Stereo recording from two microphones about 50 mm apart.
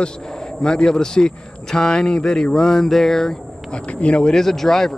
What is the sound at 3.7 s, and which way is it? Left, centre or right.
Speech, left.